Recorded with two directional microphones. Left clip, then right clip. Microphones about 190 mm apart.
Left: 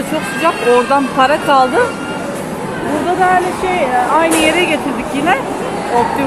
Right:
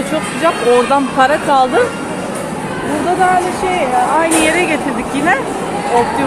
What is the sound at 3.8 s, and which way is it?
Speech, centre (ahead or behind).